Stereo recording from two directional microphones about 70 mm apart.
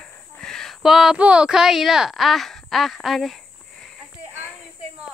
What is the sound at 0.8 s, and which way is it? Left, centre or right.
Speech, centre.